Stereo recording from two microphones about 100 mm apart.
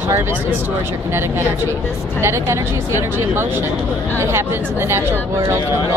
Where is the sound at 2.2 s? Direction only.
25° right (ahead or behind).